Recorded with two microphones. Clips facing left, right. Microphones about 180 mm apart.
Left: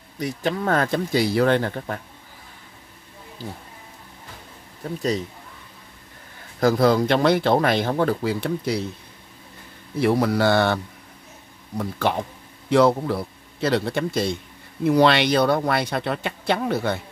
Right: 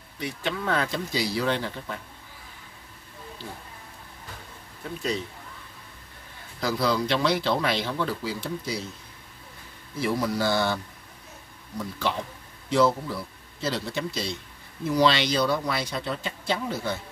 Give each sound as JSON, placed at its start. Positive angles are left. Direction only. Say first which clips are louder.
{"t": 0.2, "sound": "speech", "louder": "left 6 dB", "side_deg": 40}
{"t": 6.6, "sound": "speech", "louder": "left 8 dB", "side_deg": 50}
{"t": 9.9, "sound": "speech", "louder": "left 7 dB", "side_deg": 65}
{"t": 11.8, "sound": "speech", "louder": "left 5 dB", "side_deg": 55}